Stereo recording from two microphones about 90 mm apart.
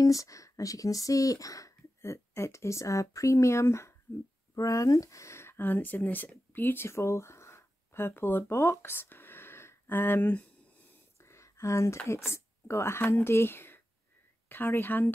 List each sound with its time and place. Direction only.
0.0 s speech: 35° left (ahead or behind); by 10.5 s 20° left (ahead or behind)
11.1 s a sound: 30° left (ahead or behind)
12.1 s speech: 30° left (ahead or behind)